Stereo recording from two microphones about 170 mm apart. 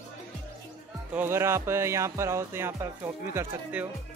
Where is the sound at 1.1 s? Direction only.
15° right (ahead or behind).